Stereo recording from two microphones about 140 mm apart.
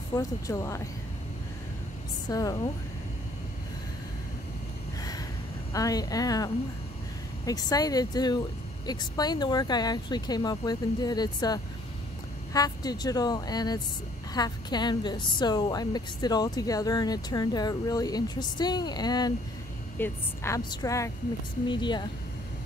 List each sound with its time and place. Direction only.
0.1 s a woman's voice: 25° left (ahead or behind)
2.2 s a woman's voice: 30° left (ahead or behind)
5.7 s a woman's voice: 25° left (ahead or behind)
20.0 s a woman's voice: 20° left (ahead or behind)
21.6 s a woman's voice: 35° left (ahead or behind)